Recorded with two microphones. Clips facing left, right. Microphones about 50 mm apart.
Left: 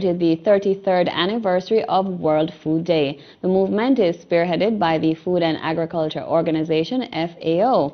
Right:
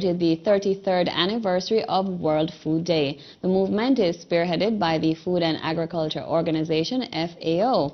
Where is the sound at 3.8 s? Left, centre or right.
Centre.